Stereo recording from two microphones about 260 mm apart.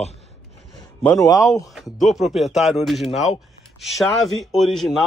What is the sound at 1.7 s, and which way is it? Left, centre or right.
Speech, centre.